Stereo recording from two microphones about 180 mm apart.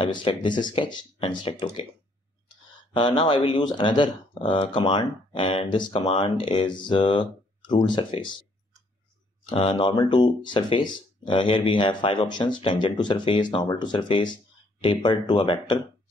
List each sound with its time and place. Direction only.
0.0 s speech: 25° left (ahead or behind)
2.9 s speech: 25° left (ahead or behind)
9.7 s speech: 25° left (ahead or behind)